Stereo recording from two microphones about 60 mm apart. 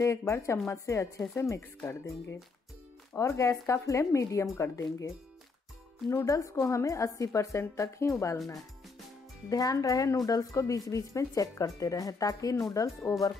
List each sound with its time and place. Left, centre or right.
0.0 s a woman's voice: left
6.0 s a woman's voice: left
9.5 s speech: left